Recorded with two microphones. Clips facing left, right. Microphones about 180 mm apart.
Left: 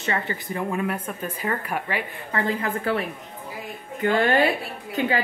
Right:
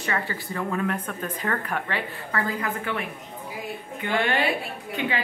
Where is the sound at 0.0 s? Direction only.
25° left (ahead or behind).